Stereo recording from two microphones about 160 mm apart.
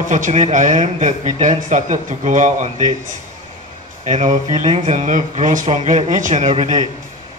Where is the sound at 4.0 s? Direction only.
50° right (ahead or behind).